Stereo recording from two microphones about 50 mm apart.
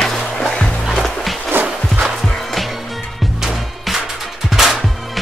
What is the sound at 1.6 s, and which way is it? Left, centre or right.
Music, right.